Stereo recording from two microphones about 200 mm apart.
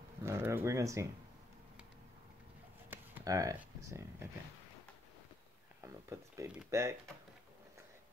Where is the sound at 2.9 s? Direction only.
15° right (ahead or behind).